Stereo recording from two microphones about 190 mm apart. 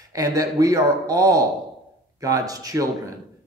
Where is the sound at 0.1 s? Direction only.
20° right (ahead or behind).